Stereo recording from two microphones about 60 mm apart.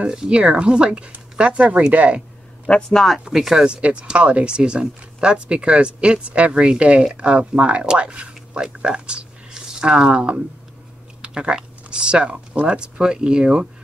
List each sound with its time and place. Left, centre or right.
0.0 s speech: centre
2.6 s a man's voice: centre
3.3 s speech: centre